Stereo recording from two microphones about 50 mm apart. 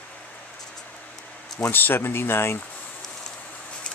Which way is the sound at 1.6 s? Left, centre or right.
Left.